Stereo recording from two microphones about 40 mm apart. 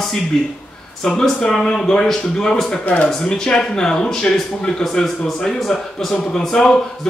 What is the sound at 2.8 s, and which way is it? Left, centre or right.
Speech, left.